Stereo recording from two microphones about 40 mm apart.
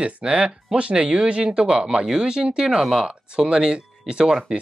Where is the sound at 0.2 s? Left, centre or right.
Centre.